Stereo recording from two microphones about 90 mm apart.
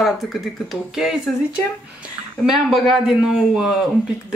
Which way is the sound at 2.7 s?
5° right (ahead or behind).